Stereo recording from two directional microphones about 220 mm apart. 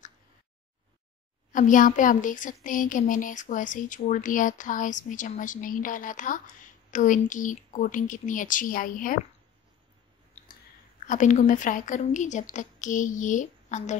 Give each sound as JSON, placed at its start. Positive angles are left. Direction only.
{"t": 1.5, "sound": "speech", "side_deg": 35}
{"t": 11.1, "sound": "speech", "side_deg": 35}